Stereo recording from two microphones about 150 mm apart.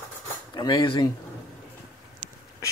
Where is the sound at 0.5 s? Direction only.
30° left (ahead or behind).